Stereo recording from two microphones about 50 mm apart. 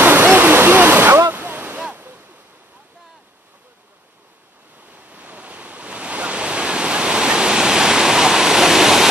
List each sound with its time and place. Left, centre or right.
0.0 s waterfall: right
4.8 s waves: right; by 9.1 s centre